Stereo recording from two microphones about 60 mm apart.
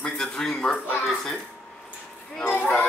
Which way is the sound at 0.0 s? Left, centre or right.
Centre.